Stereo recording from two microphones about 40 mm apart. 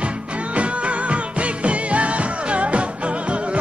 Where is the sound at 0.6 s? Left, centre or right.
Right.